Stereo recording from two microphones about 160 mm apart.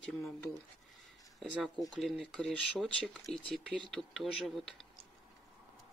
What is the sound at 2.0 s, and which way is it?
Speech, centre (ahead or behind).